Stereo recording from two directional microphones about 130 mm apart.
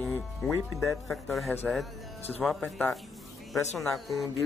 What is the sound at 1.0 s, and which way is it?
Speech, centre (ahead or behind).